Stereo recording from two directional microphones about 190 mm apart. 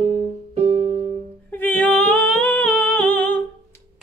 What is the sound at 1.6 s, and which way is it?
Music, 10° left (ahead or behind).